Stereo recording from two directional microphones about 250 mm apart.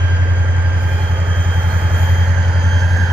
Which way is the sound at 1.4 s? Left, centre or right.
Centre.